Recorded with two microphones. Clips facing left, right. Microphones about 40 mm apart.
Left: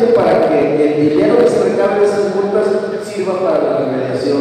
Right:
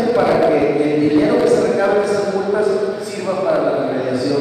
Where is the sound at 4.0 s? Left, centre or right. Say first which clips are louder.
Left 2 dB; left.